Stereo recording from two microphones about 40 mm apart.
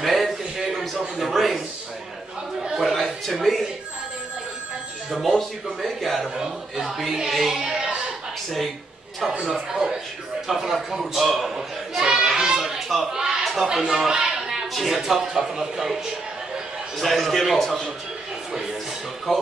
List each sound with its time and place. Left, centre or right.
0.0 s a sound: centre
0.7 s a man's voice: centre
2.7 s chatter: centre
3.3 s a man's voice: centre
5.2 s a man's voice: centre
7.6 s a sound: centre
9.5 s a man's voice: centre
12.0 s music: centre
13.1 s a sound: centre
14.7 s speech: centre
17.0 s a man's voice: centre
18.5 s speech: centre
19.3 s a man's voice: centre